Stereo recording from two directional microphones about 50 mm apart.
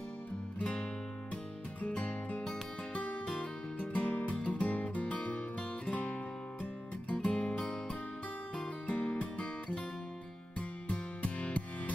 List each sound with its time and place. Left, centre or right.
0.6 s music: left
2.0 s music: left